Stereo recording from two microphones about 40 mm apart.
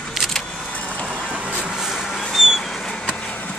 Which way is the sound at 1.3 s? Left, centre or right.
Right.